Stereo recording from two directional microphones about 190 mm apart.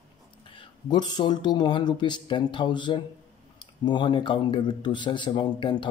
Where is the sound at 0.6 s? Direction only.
20° left (ahead or behind).